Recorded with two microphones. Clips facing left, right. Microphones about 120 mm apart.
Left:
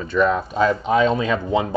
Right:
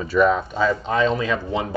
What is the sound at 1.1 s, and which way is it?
Speech, 30° left (ahead or behind).